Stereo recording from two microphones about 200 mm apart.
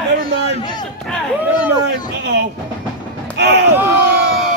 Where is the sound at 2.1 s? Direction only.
60° right (ahead or behind).